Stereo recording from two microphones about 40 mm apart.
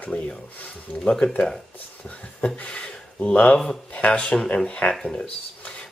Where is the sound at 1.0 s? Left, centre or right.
Left.